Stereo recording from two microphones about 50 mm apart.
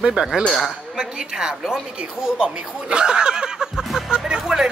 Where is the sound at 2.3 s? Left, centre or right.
Centre.